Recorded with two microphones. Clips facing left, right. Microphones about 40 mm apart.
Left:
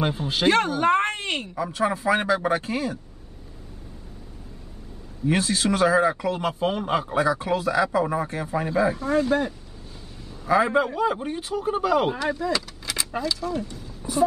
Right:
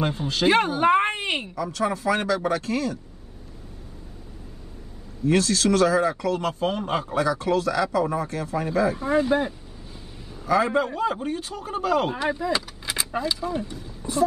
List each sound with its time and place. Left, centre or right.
0.5 s speech: centre
1.5 s speech: left
5.2 s speech: centre
7.1 s speech: left
8.9 s speech: centre
10.4 s speech: centre
12.2 s speech: centre